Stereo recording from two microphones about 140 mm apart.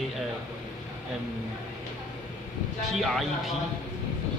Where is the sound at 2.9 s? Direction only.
Centre (ahead or behind).